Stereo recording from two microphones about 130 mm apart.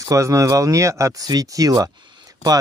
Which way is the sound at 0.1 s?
25° right (ahead or behind).